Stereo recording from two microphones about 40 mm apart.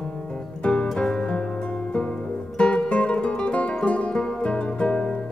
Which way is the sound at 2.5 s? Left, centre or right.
Left.